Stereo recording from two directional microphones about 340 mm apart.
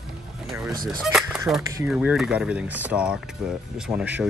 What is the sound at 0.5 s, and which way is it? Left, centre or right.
Speech, centre.